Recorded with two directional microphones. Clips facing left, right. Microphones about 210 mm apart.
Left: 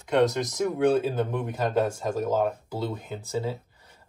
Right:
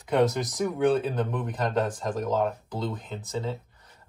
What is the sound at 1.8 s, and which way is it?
Speech, 25° left (ahead or behind).